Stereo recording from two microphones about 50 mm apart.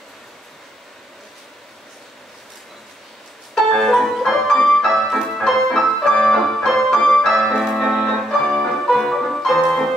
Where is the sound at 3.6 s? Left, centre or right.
Centre.